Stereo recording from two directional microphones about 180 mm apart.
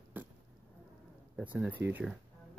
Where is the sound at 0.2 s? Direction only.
10° right (ahead or behind).